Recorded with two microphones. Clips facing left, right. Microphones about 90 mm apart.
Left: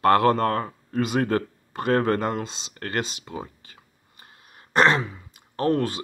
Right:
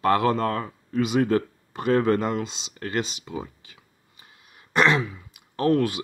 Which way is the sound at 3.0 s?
40° left (ahead or behind).